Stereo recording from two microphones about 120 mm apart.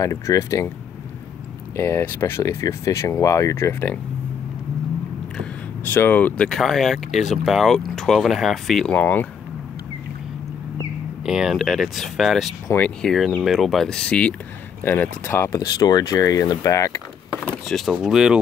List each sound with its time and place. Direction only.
0.0 s speech: 25° left (ahead or behind)
1.8 s speech: 20° left (ahead or behind)
5.9 s speech: 15° left (ahead or behind)
11.2 s speech: 5° right (ahead or behind); by 17.0 s 25° left (ahead or behind)
17.6 s speech: centre (ahead or behind)